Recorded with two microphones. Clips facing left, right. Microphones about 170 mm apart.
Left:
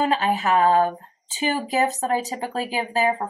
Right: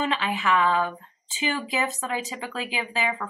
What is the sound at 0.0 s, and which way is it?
Speech, 40° left (ahead or behind).